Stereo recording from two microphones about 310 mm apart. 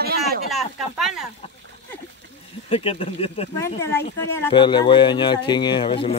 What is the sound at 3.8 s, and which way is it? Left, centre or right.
A man's voice, centre.